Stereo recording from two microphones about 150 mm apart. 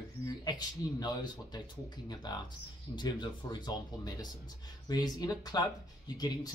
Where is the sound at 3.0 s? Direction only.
30° left (ahead or behind).